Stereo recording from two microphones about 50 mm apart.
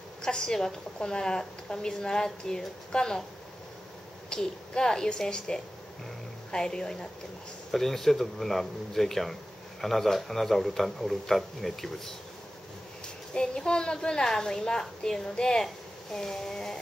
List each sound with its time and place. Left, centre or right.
0.2 s a woman's voice: centre
4.3 s a woman's voice: centre
13.3 s a woman's voice: centre